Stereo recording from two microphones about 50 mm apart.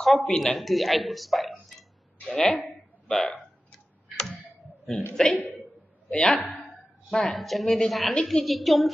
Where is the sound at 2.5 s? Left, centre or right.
Centre.